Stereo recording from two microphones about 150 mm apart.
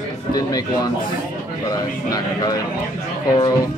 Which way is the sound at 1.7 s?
25° left (ahead or behind).